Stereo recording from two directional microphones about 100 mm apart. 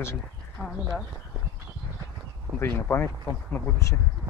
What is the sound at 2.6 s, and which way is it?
Speech, 25° left (ahead or behind).